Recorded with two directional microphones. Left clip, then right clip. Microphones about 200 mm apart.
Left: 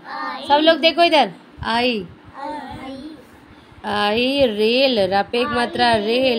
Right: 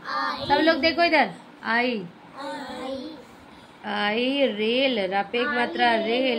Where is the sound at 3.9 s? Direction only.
50° left (ahead or behind).